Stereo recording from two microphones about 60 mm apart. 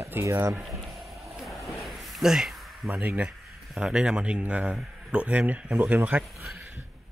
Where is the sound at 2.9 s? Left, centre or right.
Right.